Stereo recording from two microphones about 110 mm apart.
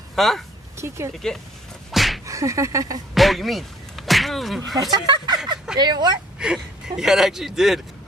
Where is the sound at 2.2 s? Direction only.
30° right (ahead or behind).